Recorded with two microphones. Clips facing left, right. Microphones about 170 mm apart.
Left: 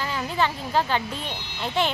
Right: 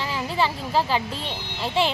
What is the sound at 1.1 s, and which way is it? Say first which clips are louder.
Speech: right 1 dB; 30° right (ahead or behind).